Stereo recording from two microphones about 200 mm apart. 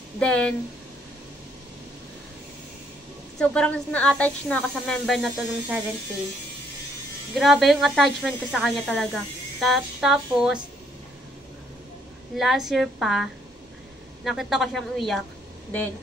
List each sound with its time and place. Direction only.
0.2 s speech: 5° left (ahead or behind)
3.3 s speech: 5° left (ahead or behind)
7.3 s speech: centre (ahead or behind)
12.4 s speech: centre (ahead or behind)